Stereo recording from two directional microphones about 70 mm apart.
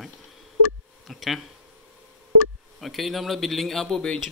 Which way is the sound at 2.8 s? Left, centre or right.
Centre.